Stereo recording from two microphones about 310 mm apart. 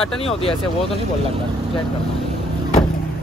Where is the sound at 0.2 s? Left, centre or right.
Centre.